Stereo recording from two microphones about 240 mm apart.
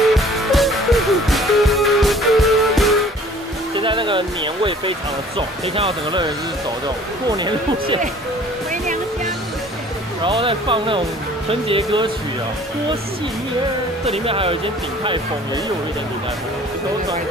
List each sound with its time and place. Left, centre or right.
0.1 s music: centre
3.7 s music: centre
5.8 s speech: right
7.2 s speech: centre
10.2 s speech: right
14.0 s speech: right